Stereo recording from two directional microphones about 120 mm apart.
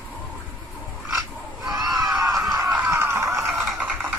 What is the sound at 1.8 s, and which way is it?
Screaming, 30° right (ahead or behind).